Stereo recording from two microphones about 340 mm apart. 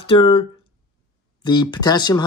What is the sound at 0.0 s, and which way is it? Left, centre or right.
Speech, centre.